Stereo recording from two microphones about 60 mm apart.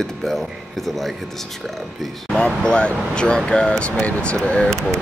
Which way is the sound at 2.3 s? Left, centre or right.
Centre.